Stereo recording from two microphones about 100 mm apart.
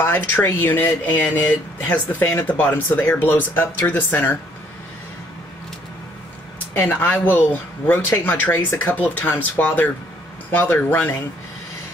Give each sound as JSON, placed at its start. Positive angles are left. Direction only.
{"t": 0.0, "sound": "speech", "side_deg": 25}
{"t": 6.9, "sound": "speech", "side_deg": 20}